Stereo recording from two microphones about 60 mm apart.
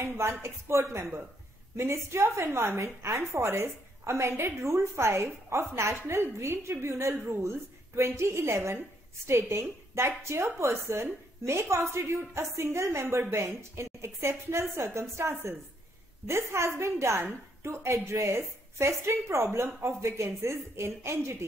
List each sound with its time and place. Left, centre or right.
0.0 s a woman's voice: right